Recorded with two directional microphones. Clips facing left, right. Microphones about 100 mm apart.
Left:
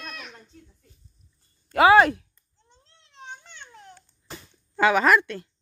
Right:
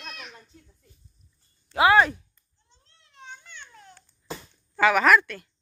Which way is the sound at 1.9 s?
80° left.